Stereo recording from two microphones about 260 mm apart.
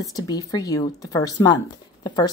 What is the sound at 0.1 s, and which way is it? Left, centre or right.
A woman's voice, centre.